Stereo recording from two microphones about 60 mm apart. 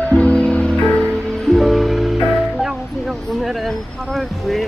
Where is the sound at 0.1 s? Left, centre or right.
Centre.